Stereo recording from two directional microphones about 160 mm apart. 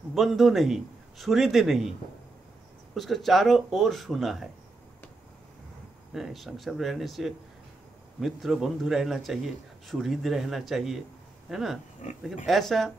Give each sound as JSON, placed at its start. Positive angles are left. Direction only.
{"t": 0.1, "sound": "a man's voice", "side_deg": 0}
{"t": 6.1, "sound": "a man's voice", "side_deg": 0}
{"t": 12.0, "sound": "speech", "side_deg": 50}
{"t": 12.4, "sound": "a man's voice", "side_deg": 0}